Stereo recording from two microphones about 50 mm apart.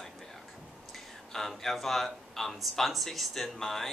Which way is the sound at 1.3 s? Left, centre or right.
Centre.